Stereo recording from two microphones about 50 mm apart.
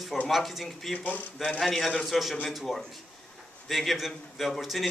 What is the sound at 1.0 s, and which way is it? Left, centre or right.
Speech, left.